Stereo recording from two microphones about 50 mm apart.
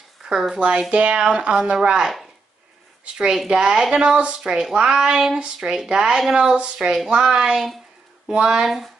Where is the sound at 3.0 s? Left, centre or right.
Centre.